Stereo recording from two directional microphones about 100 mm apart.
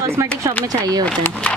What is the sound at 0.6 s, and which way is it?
Speech, 40° right (ahead or behind).